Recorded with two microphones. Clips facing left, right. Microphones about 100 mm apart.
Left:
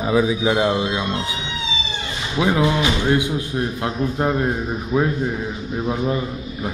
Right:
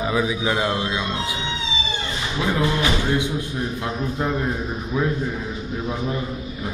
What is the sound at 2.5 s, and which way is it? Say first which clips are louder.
Speech: left 2 dB; 15° left (ahead or behind).